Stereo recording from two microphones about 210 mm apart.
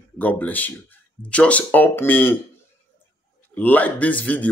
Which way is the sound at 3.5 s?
10° left (ahead or behind).